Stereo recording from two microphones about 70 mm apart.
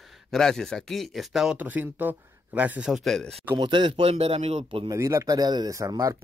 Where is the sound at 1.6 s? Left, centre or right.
Right.